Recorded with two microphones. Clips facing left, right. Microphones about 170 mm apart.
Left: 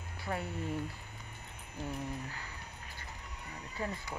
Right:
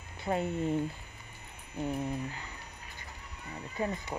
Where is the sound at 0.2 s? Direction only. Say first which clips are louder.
Right 7 dB; 20° right (ahead or behind).